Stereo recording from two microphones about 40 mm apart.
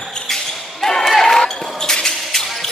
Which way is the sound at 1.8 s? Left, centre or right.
Centre.